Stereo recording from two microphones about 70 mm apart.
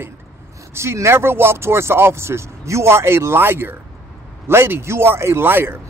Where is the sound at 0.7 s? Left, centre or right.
Right.